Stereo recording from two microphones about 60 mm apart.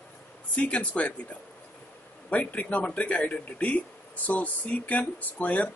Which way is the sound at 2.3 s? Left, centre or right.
Left.